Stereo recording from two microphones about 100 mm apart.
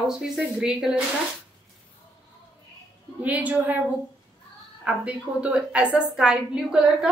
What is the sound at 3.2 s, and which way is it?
A woman's voice, 15° right (ahead or behind).